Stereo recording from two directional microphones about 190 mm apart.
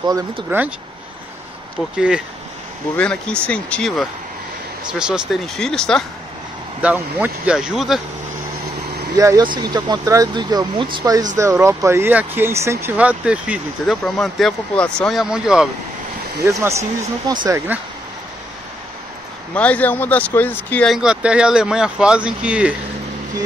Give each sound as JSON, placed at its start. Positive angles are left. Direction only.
{"t": 0.0, "sound": "speech", "side_deg": -15}
{"t": 2.0, "sound": "speech", "side_deg": -5}
{"t": 3.0, "sound": "speech", "side_deg": 5}
{"t": 9.1, "sound": "speech", "side_deg": -20}
{"t": 16.4, "sound": "speech", "side_deg": -15}
{"t": 19.5, "sound": "speech", "side_deg": 5}